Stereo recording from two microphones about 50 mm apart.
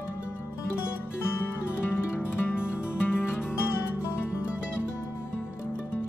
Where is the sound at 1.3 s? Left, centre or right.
Left.